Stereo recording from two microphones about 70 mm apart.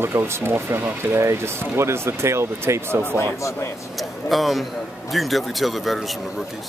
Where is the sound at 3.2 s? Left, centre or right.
Left.